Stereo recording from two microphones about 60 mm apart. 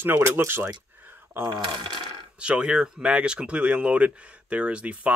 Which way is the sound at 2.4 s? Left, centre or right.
Centre.